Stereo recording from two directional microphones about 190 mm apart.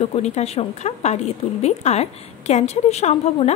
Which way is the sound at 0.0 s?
35° left (ahead or behind).